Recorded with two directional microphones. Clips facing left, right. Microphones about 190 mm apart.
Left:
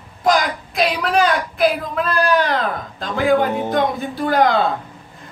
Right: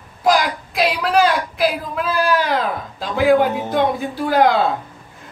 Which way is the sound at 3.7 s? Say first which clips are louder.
Right 1 dB; 5° right (ahead or behind).